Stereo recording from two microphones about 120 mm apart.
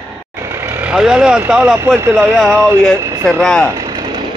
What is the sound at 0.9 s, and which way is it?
Speech, 5° right (ahead or behind).